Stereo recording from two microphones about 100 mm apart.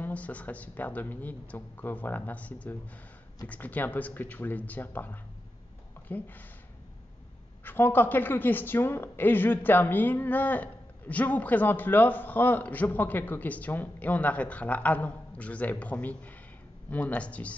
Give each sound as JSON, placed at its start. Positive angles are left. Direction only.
{"t": 0.0, "sound": "a woman's voice", "side_deg": 15}
{"t": 7.6, "sound": "a woman's voice", "side_deg": 20}